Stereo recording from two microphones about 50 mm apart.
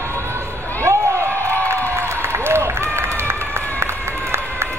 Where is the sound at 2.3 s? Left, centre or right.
Right.